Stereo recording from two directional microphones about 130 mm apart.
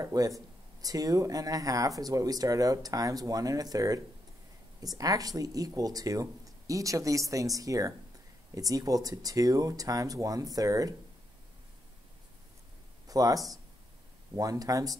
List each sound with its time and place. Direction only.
0.0 s speech: 25° right (ahead or behind)
13.0 s a sound: 30° right (ahead or behind)
14.3 s speech: 25° right (ahead or behind)